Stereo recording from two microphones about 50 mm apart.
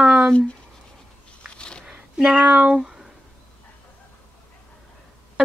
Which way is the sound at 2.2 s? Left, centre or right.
Centre.